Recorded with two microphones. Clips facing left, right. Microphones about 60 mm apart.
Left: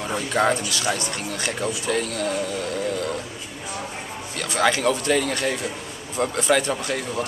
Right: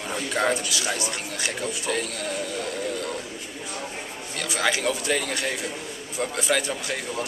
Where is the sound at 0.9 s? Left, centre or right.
Centre.